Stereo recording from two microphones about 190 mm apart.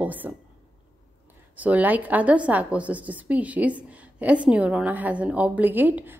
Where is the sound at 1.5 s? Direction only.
10° right (ahead or behind).